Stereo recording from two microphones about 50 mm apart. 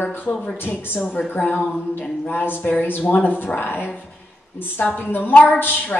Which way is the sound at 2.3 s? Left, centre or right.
Left.